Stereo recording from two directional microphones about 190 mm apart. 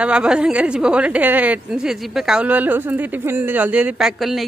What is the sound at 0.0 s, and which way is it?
A woman's voice, 5° right (ahead or behind).